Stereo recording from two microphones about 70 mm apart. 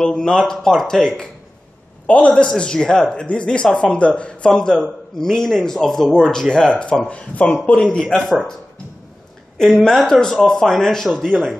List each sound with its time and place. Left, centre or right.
0.0 s speech: centre
9.6 s speech: centre